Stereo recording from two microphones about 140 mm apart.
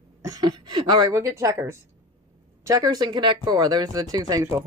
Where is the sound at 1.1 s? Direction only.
20° right (ahead or behind).